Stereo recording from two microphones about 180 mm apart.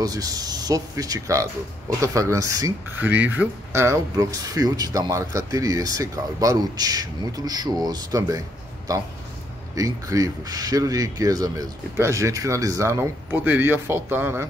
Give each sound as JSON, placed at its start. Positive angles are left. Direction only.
{"t": 0.0, "sound": "speech", "side_deg": -20}
{"t": 9.8, "sound": "speech", "side_deg": -20}